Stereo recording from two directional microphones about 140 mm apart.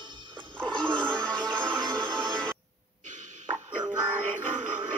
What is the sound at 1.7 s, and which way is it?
Music, 35° right (ahead or behind).